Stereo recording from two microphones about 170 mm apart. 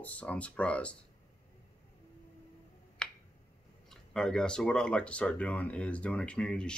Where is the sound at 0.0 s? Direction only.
10° left (ahead or behind).